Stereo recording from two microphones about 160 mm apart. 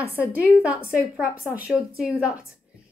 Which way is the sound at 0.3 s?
10° right (ahead or behind).